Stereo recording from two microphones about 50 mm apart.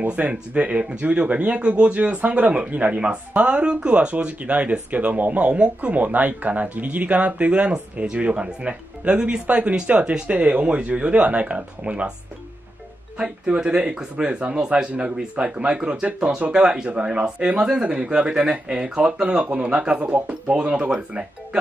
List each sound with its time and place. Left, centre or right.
0.0 s speech: right
13.2 s speech: centre